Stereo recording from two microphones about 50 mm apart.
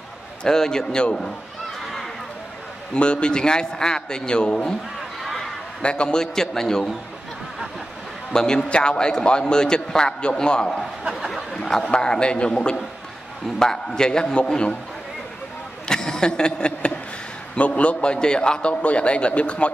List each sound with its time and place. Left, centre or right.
0.4 s a man's voice: centre
2.9 s a man's voice: centre
5.2 s a sound: centre
5.8 s a man's voice: left
8.3 s a man's voice: centre
11.1 s speech: centre
11.5 s a man's voice: centre
15.9 s a sound: centre
17.6 s a man's voice: left